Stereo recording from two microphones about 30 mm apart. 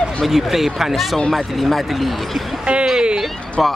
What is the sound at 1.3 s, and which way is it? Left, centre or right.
Speech, centre.